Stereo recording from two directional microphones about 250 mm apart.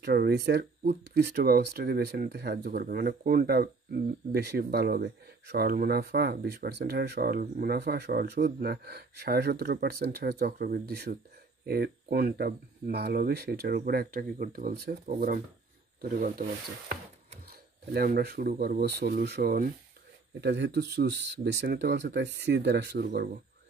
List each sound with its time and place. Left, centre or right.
0.0 s speech: right